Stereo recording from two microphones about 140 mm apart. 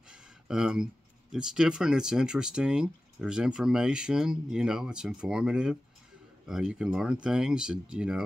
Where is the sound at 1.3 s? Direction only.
5° right (ahead or behind).